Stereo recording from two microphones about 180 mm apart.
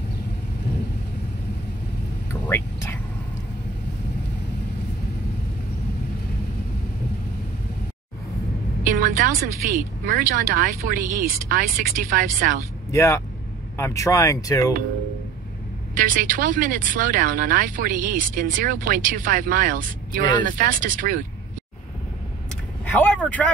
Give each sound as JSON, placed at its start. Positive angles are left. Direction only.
{"t": 2.4, "sound": "whispering", "side_deg": 15}
{"t": 8.9, "sound": "speech", "side_deg": -45}
{"t": 12.9, "sound": "speech", "side_deg": 15}
{"t": 15.9, "sound": "speech", "side_deg": -50}
{"t": 22.8, "sound": "vehicle", "side_deg": 5}